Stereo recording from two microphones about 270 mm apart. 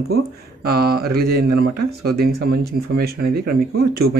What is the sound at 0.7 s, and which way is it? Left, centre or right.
Speech, right.